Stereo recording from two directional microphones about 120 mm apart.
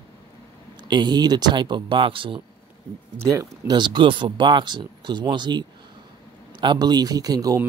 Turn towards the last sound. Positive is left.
turn(degrees=-30)  # may be behind; listen again after turning